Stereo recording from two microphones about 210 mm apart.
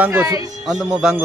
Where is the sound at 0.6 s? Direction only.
5° right (ahead or behind).